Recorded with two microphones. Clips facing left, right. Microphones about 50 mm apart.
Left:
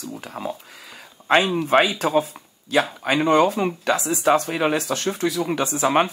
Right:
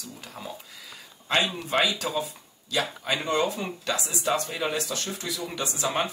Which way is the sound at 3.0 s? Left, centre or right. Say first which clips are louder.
Left 9 dB; left.